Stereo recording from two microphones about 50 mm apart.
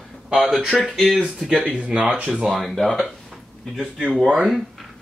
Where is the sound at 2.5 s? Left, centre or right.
Centre.